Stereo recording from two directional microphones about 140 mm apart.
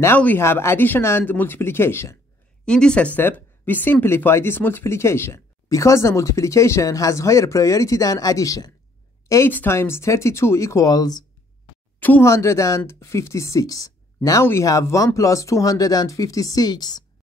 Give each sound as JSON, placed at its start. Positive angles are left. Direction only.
{"t": 0.0, "sound": "speech", "side_deg": 15}
{"t": 2.6, "sound": "speech", "side_deg": 5}
{"t": 12.0, "sound": "speech", "side_deg": 15}